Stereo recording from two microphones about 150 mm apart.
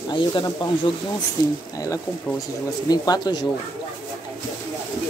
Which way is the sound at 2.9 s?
25° left (ahead or behind).